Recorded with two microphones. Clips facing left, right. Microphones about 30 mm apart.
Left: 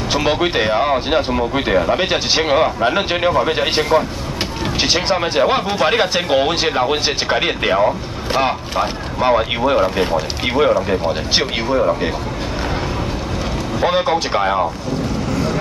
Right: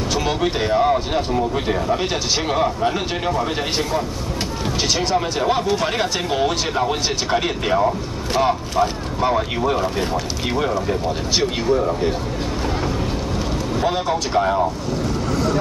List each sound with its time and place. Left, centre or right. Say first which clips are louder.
0.1 s speech: left 5 dB; left
13.7 s speech: left 5 dB; left